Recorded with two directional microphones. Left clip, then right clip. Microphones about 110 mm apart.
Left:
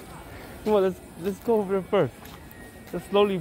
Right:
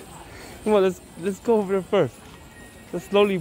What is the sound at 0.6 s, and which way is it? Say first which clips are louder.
Speech: right 3 dB; 90° right.